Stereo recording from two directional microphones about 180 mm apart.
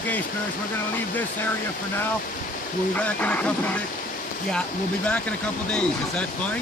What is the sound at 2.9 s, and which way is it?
Speech, 10° left (ahead or behind).